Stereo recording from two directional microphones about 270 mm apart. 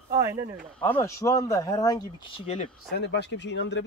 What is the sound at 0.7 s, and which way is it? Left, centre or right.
Speech, centre.